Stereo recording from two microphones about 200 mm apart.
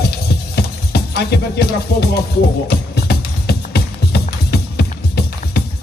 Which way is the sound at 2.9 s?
50° left (ahead or behind).